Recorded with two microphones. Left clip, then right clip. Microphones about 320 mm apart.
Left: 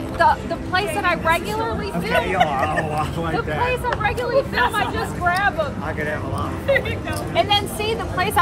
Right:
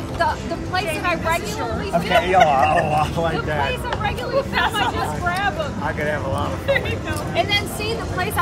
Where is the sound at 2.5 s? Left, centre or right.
Right.